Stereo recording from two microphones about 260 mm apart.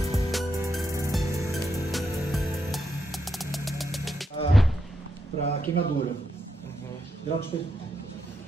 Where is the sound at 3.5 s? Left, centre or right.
Centre.